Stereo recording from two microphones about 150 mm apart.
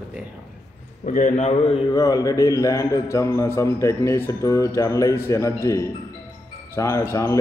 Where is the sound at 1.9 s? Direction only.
25° left (ahead or behind).